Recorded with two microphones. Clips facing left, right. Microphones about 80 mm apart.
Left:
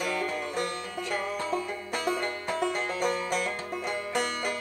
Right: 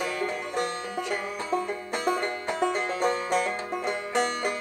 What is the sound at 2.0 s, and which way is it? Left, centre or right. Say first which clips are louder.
Music: right 3 dB; right.